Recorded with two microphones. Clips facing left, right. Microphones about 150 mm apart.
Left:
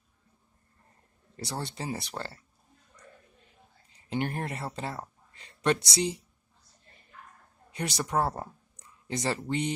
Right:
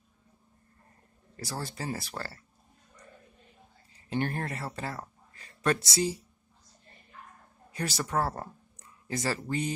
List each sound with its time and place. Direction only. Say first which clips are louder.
1.3 s speech: left 1 dB; 25° left (ahead or behind)
4.1 s speech: even; 20° left (ahead or behind)
7.7 s speech: left 1 dB; 20° left (ahead or behind)